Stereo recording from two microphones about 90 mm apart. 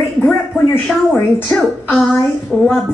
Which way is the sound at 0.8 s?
5° left (ahead or behind).